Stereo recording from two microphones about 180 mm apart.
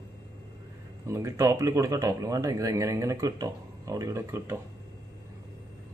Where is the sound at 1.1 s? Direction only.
15° right (ahead or behind).